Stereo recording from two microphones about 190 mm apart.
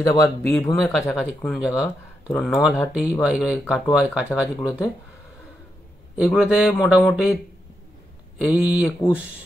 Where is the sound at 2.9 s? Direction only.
5° right (ahead or behind).